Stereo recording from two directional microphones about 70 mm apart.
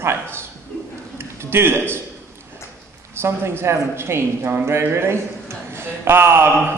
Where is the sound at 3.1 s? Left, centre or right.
Right.